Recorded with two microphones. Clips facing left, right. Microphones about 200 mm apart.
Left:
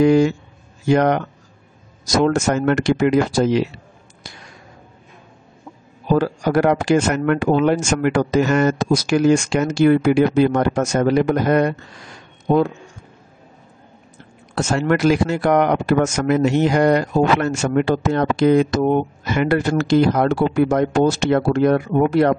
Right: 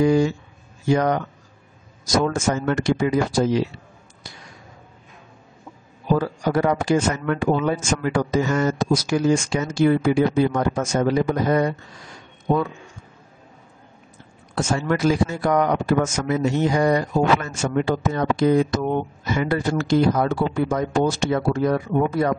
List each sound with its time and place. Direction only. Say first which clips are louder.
0.0 s speech: left 4 dB; 75° left (ahead or behind)
6.1 s speech: left 4 dB; 75° left (ahead or behind)
14.5 s speech: left 4 dB; 75° left (ahead or behind)